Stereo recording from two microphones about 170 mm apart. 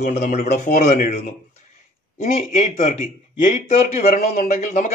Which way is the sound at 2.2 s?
40° left (ahead or behind).